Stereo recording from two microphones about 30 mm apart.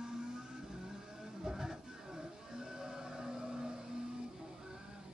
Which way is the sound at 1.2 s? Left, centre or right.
Centre.